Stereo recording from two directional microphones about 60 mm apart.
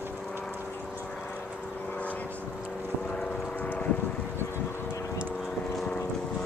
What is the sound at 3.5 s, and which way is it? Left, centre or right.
Vehicle, left.